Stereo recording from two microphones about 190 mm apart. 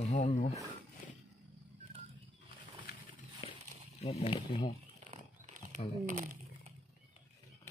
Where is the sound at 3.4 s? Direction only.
30° left (ahead or behind).